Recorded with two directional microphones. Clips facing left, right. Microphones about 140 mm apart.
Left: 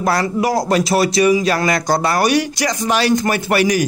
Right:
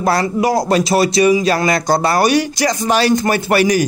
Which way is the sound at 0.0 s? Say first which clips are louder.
Right 2 dB; 25° right (ahead or behind).